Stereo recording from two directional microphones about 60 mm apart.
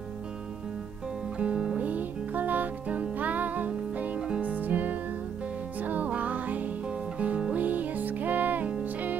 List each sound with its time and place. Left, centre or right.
1.4 s music: centre